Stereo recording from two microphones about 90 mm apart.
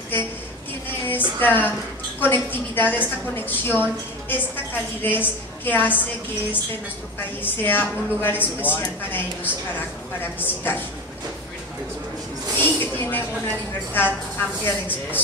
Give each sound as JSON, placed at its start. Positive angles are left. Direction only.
{"t": 0.8, "sound": "a sound", "side_deg": 20}
{"t": 1.4, "sound": "a woman's voice", "side_deg": 20}
{"t": 7.4, "sound": "a woman's voice", "side_deg": 20}
{"t": 12.5, "sound": "a woman's voice", "side_deg": 25}